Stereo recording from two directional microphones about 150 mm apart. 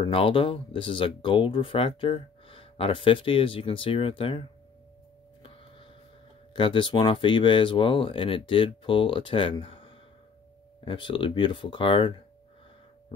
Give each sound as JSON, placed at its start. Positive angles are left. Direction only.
{"t": 0.0, "sound": "speech", "side_deg": 35}
{"t": 6.5, "sound": "speech", "side_deg": 35}